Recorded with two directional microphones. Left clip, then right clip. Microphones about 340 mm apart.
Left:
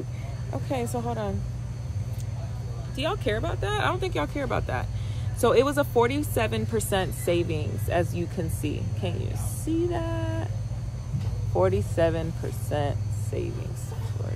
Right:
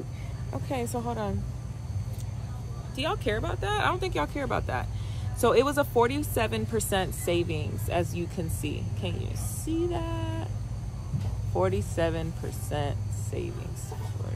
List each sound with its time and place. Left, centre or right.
0.5 s speech: centre
3.0 s speech: centre
11.5 s speech: centre